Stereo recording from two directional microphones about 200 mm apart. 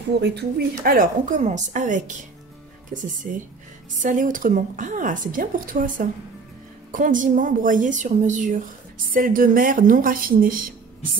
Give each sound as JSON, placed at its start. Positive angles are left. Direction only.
{"t": 0.2, "sound": "speech", "side_deg": -55}
{"t": 0.7, "sound": "a woman's voice", "side_deg": -40}